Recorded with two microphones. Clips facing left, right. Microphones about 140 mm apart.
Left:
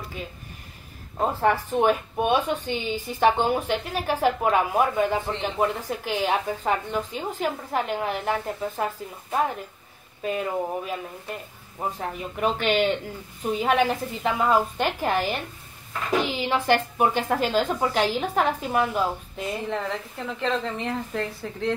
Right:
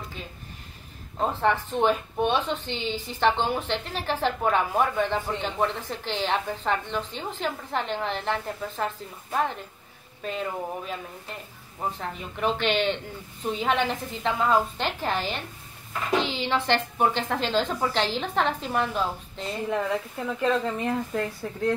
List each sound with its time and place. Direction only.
1.1 s speech: 10° left (ahead or behind)
19.7 s a woman's voice: 10° right (ahead or behind)